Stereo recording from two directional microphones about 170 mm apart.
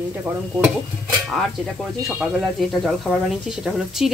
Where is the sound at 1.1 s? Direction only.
Centre (ahead or behind).